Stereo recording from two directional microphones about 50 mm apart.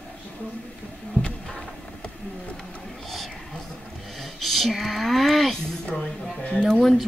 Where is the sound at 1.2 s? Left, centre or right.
Left.